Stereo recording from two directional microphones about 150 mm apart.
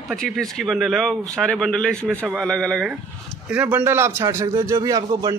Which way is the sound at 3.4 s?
10° right (ahead or behind).